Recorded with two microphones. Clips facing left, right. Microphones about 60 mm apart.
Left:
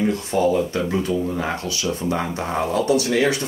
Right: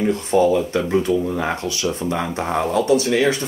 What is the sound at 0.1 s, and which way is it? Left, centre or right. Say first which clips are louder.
Speech: right 3 dB; right.